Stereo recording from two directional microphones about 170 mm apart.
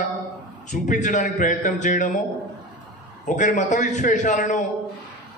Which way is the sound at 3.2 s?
45° left (ahead or behind).